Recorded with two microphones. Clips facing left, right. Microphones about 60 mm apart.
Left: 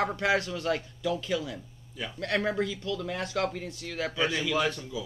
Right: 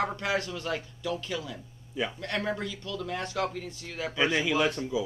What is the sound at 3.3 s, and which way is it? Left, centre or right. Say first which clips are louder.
Speech: left 1 dB; centre.